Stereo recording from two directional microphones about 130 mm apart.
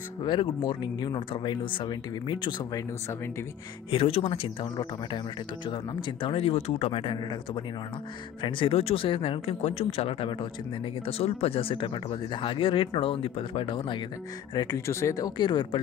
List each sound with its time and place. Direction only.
0.2 s speech: 35° left (ahead or behind)
3.9 s speech: 45° left (ahead or behind)
14.9 s speech: 20° left (ahead or behind)